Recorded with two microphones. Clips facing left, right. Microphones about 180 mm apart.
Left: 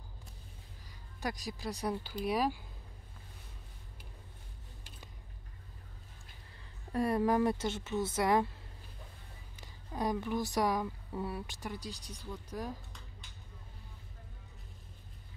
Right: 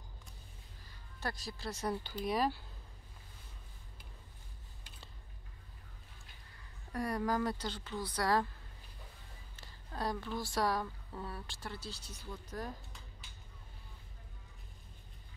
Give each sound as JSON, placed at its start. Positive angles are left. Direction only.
{"t": 1.2, "sound": "speech", "side_deg": 15}
{"t": 6.9, "sound": "speech", "side_deg": 25}
{"t": 9.6, "sound": "speech", "side_deg": 15}